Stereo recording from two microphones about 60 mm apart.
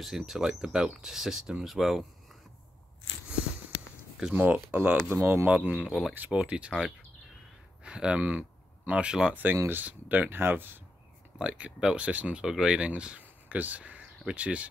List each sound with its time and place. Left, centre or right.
0.0 s speech: centre
4.4 s speech: right
5.1 s speech: right
5.5 s speech: right
5.9 s speech: centre
6.1 s speech: right
7.8 s speech: centre; by 10.8 s right
11.3 s speech: centre
13.2 s a sound: right